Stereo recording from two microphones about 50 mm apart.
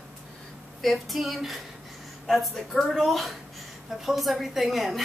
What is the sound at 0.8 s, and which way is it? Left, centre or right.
Speech, centre.